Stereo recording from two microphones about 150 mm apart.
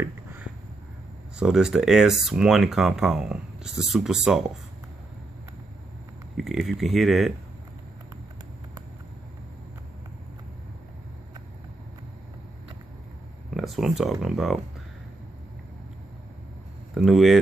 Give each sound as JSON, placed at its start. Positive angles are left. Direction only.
{"t": 0.0, "sound": "a sound", "side_deg": -15}
{"t": 1.4, "sound": "speech", "side_deg": -5}
{"t": 6.3, "sound": "speech", "side_deg": 0}
{"t": 13.5, "sound": "a sound", "side_deg": 0}
{"t": 14.2, "sound": "speech", "side_deg": -5}
{"t": 16.9, "sound": "speech", "side_deg": 0}